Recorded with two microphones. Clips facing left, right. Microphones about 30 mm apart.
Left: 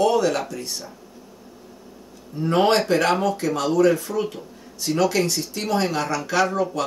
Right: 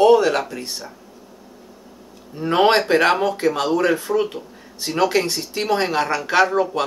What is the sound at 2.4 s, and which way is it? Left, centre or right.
Speech, right.